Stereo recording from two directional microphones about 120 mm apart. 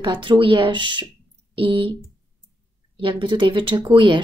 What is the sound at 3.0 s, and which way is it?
A woman's voice, 45° right (ahead or behind).